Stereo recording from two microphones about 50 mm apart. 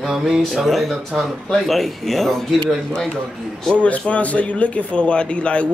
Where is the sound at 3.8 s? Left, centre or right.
Left.